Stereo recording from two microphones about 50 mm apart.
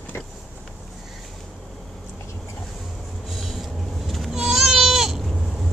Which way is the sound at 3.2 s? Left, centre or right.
Centre.